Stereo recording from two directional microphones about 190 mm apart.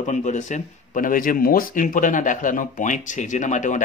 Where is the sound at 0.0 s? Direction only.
40° left (ahead or behind).